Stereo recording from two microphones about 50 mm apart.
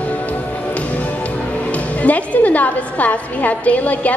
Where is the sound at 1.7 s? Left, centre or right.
Left.